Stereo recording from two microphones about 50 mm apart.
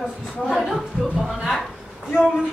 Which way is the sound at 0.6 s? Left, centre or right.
Centre.